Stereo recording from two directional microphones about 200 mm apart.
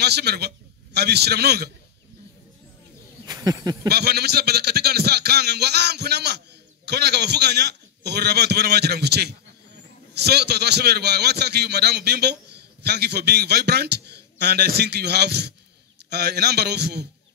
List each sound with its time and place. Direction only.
0.0 s a man's voice: 55° right (ahead or behind)
3.3 s a sound: 20° right (ahead or behind)
3.9 s a man's voice: 55° right (ahead or behind)